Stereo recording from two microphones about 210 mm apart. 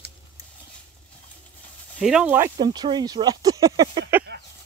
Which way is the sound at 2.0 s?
5° right (ahead or behind).